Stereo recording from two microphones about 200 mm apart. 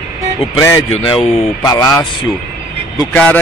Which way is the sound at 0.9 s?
30° left (ahead or behind).